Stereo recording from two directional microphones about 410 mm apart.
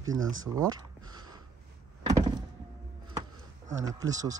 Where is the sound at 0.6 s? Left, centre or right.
Centre.